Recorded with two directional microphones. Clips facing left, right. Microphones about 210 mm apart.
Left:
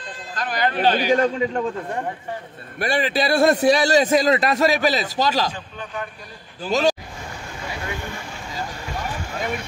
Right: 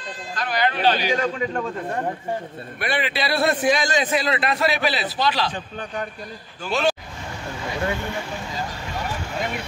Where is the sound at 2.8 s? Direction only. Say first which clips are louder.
Left 4 dB; 45° left (ahead or behind).